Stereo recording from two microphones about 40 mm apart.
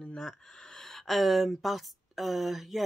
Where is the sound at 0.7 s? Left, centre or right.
Centre.